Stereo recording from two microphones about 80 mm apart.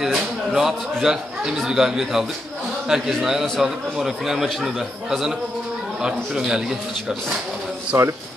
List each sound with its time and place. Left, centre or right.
0.0 s a man's voice: centre
7.9 s speech: right